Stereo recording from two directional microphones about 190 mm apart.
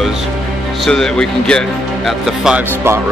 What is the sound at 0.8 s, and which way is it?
Speech, 5° left (ahead or behind).